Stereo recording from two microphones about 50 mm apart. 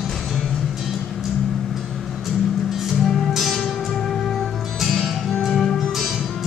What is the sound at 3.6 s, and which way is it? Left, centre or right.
Music, centre.